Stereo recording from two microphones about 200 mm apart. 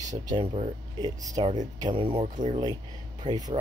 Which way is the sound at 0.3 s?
20° right (ahead or behind).